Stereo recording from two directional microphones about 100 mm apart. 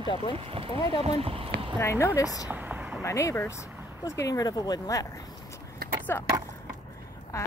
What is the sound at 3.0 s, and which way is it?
Speech, 30° left (ahead or behind).